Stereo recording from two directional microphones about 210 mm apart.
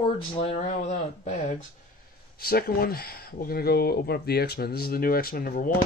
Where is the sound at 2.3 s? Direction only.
45° left (ahead or behind).